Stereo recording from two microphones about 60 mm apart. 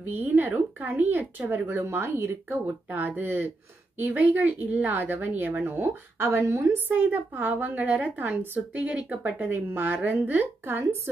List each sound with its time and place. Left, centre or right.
0.0 s speech: right
1.7 s speech: right
2.6 s a woman's voice: right
6.7 s a woman's voice: right